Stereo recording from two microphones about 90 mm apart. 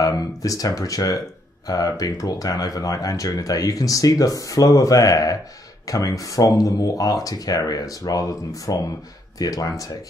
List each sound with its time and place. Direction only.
0.0 s speech: 40° left (ahead or behind)